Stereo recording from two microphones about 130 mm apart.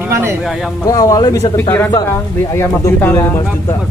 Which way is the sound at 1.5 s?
15° left (ahead or behind).